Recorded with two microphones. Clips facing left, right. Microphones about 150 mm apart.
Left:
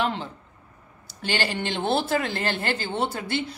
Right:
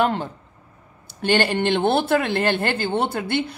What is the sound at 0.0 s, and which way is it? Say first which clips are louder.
Speech: right 6 dB; 50° right (ahead or behind).